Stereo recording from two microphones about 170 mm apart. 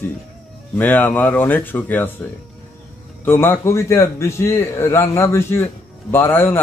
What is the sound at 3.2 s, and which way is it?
A man's voice, 15° left (ahead or behind).